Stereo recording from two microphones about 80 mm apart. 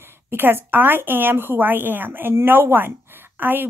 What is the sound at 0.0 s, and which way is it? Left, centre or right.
Speech, right.